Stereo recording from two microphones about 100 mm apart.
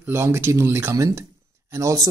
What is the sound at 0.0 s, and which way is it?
Speech, 25° right (ahead or behind).